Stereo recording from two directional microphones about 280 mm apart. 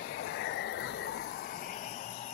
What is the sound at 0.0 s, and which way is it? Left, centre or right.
Vehicle, left.